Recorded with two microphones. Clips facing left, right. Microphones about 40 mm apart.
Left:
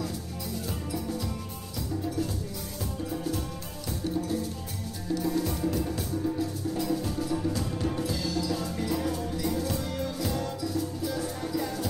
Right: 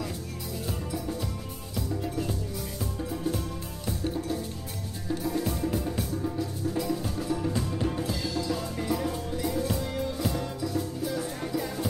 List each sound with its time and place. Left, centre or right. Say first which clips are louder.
5.7 s music: even; right
6.8 s music: left 3 dB; centre